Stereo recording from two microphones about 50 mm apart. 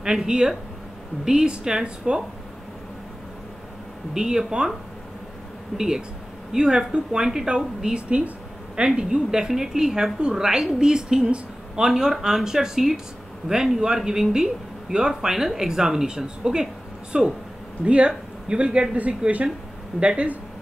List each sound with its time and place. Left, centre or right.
0.0 s speech: centre
4.1 s speech: centre
5.8 s speech: centre